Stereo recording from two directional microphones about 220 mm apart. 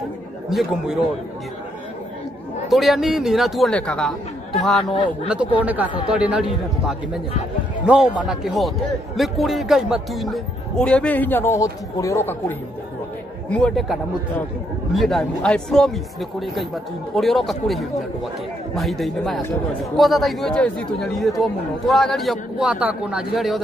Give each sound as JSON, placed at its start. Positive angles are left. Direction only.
{"t": 0.5, "sound": "a man's voice", "side_deg": 0}
{"t": 2.7, "sound": "a man's voice", "side_deg": 0}
{"t": 7.8, "sound": "a man's voice", "side_deg": -5}